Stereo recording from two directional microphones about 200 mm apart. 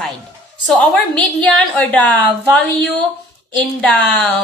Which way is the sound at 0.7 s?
5° left (ahead or behind).